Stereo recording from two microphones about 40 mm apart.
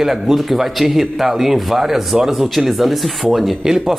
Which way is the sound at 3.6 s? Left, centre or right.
Centre.